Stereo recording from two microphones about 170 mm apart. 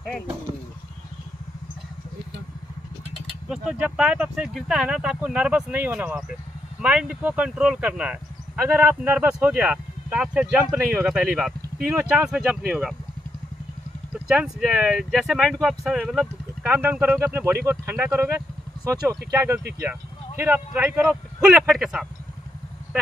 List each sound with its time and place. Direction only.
3.4 s speech: 5° right (ahead or behind)
14.1 s speech: 5° right (ahead or behind)
19.3 s speech: 15° right (ahead or behind)